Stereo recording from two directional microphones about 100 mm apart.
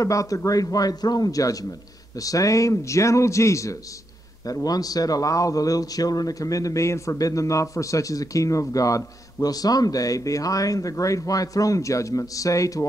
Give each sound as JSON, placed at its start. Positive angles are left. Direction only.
{"t": 0.0, "sound": "speech", "side_deg": 35}